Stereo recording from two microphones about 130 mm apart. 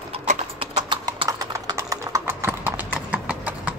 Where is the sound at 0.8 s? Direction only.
40° right (ahead or behind).